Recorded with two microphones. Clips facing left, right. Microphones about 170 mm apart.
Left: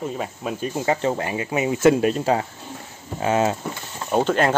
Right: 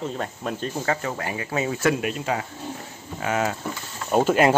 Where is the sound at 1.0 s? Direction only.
25° left (ahead or behind).